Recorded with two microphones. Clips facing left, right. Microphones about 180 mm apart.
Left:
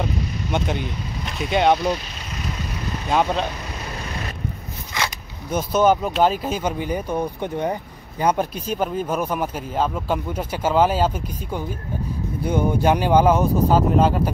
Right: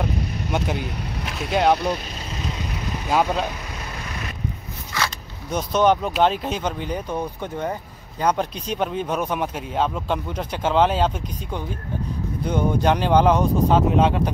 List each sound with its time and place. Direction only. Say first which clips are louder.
0.0 s speech: even; 5° right (ahead or behind)
3.1 s speech: even; 5° right (ahead or behind)
4.9 s zipper: even; 15° left (ahead or behind)
5.5 s speech: left 1 dB; 5° left (ahead or behind)
12.4 s speech: left 1 dB; 10° left (ahead or behind)